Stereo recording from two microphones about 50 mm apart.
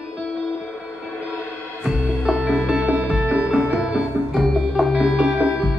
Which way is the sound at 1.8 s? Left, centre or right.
Centre.